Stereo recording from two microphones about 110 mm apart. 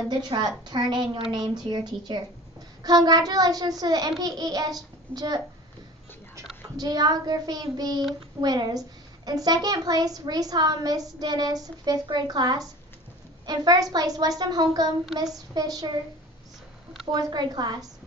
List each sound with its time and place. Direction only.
0.1 s a woman's voice: 40° right (ahead or behind)
6.8 s a child's voice: 35° right (ahead or behind)
17.1 s a child's voice: 40° right (ahead or behind)